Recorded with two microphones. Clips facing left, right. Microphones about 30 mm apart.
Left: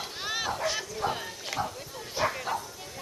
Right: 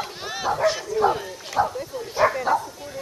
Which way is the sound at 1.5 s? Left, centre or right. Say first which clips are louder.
Right 11 dB; right.